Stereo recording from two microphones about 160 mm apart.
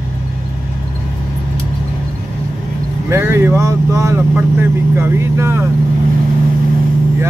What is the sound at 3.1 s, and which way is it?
Speech, 15° right (ahead or behind).